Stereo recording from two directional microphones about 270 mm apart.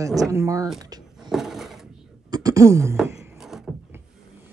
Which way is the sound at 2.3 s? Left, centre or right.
Centre.